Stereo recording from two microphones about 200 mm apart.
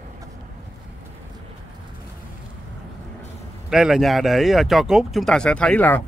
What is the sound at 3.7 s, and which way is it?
Speech, 5° right (ahead or behind).